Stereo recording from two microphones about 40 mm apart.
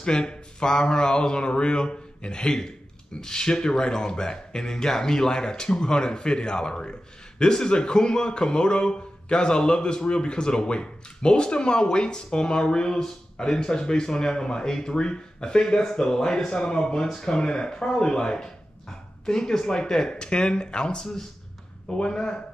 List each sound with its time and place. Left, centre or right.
0.0 s speech: left